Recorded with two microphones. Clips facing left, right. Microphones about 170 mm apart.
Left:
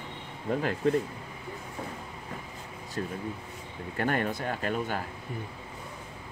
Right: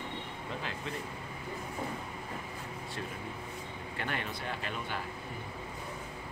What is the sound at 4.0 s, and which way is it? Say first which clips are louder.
Speech: left 9 dB; 45° left (ahead or behind).